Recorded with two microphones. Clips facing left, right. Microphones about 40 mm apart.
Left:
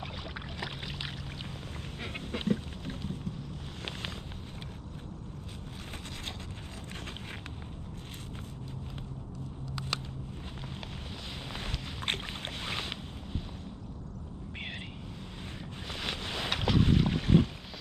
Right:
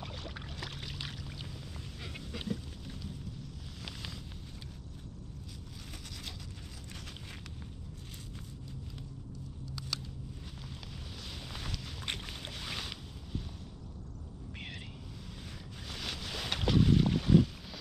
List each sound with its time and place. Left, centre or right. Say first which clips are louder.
0.6 s boat: left 5 dB; left
2.0 s goose: left 6 dB; left
12.1 s boat: left 5 dB; left
12.6 s boat: left 4 dB; left
15.9 s boat: left 4 dB; left